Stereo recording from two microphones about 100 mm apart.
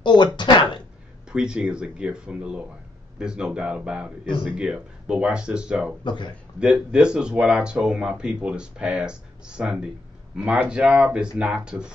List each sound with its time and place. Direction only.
0.0 s speech: 50° left (ahead or behind)
1.3 s speech: 10° right (ahead or behind)
6.0 s speech: 50° left (ahead or behind)
6.6 s speech: 10° right (ahead or behind)